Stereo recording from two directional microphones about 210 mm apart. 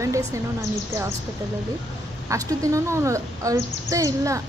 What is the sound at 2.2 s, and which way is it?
A woman's voice, 15° right (ahead or behind).